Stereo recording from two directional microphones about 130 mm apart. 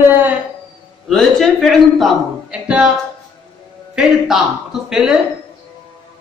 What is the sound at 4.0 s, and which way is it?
Speech, centre (ahead or behind).